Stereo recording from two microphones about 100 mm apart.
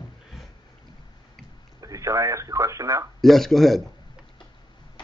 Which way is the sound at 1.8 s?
35° right (ahead or behind).